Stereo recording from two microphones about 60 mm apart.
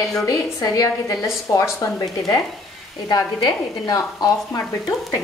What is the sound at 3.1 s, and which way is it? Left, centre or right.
A woman's voice, left.